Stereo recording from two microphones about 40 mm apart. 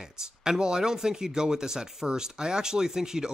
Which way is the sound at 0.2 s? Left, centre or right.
Centre.